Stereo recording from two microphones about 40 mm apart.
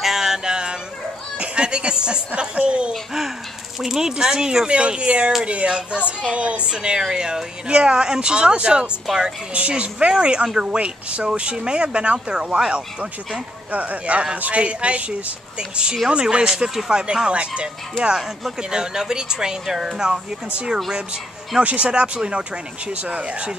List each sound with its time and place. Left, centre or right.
0.0 s music: centre
1.4 s speech: right
2.9 s speech: centre; by 6.6 s right
6.7 s a woman's voice: right
16.4 s speech: centre
16.9 s speech: right
18.0 s speech: centre
18.6 s speech: centre
21.6 s speech: right